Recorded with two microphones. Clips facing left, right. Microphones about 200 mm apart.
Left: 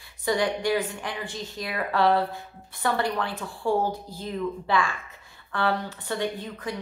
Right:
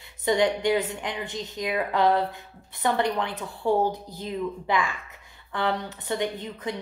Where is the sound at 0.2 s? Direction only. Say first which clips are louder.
Right 2 dB; 20° right (ahead or behind).